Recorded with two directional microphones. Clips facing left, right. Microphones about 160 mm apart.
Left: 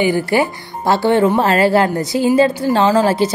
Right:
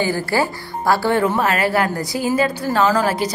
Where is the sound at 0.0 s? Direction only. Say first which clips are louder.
Left 4 dB; 20° left (ahead or behind).